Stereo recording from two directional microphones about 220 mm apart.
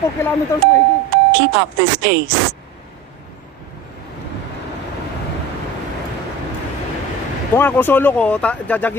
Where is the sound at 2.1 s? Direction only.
50° right (ahead or behind).